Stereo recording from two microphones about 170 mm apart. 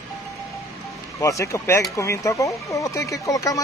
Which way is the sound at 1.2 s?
20° left (ahead or behind).